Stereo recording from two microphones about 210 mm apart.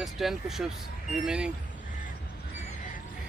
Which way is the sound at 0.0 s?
Centre (ahead or behind).